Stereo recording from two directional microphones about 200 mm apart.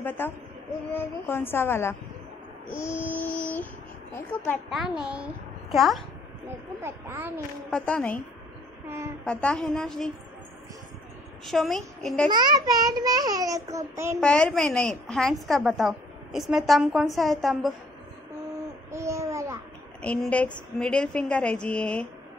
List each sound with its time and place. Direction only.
0.2 s a woman's voice: 10° left (ahead or behind)
6.8 s speech: 10° right (ahead or behind)
7.7 s a woman's voice: 5° left (ahead or behind)
8.8 s a woman's voice: 15° right (ahead or behind)
9.2 s a woman's voice: 5° left (ahead or behind)
11.4 s a woman's voice: centre (ahead or behind)
12.3 s child singing: 20° right (ahead or behind)
14.2 s a woman's voice: 5° left (ahead or behind)
18.9 s a sound: 15° right (ahead or behind)
20.0 s a woman's voice: 5° left (ahead or behind)